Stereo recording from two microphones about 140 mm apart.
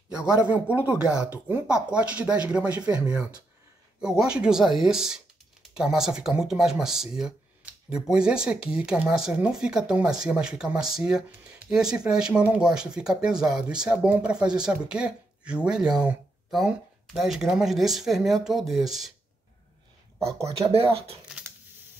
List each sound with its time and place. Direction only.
0.1 s speech: 5° right (ahead or behind)
20.2 s speech: 20° right (ahead or behind)
20.7 s speech: 45° right (ahead or behind)